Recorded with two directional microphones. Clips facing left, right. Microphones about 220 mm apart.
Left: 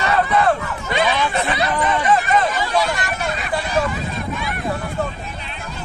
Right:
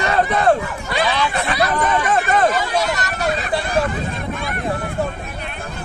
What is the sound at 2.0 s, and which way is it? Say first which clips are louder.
Hubbub: even; 50° right (ahead or behind).